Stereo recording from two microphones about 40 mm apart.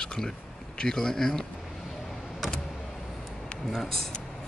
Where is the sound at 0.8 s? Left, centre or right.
Centre.